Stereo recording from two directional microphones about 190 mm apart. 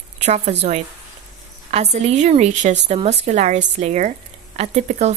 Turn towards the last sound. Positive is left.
turn(degrees=-35)  # may be behind; listen again after turning